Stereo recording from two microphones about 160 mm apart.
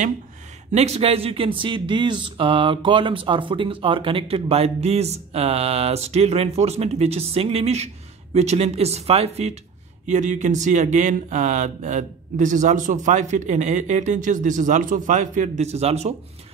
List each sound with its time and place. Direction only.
0.7 s speech: 40° right (ahead or behind)